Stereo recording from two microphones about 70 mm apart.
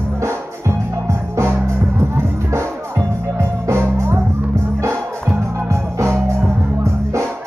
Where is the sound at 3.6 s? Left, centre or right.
Right.